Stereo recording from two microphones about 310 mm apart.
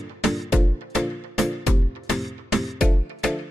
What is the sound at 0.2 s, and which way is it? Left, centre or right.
Music, centre.